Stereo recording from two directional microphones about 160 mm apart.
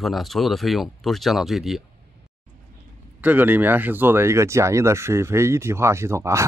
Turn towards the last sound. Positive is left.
turn(degrees=-20)  # may be behind; listen again after turning